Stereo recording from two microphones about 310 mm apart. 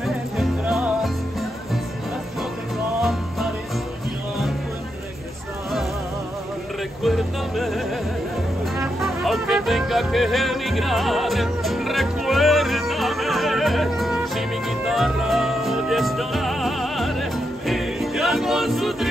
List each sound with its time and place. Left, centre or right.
0.0 s music: centre
3.0 s music: centre
7.0 s music: centre